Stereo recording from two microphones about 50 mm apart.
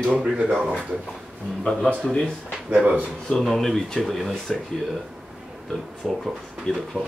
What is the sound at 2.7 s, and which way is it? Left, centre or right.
Speech, right.